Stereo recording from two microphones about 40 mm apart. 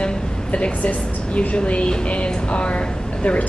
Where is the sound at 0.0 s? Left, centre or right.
Left.